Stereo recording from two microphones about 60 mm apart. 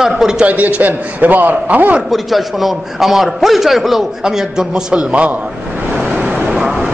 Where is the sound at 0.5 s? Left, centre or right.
Right.